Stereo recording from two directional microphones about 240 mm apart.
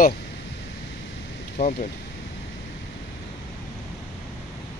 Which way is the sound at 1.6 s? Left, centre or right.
Left.